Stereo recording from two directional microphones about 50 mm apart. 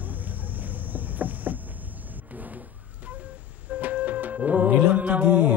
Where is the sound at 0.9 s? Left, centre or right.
Right.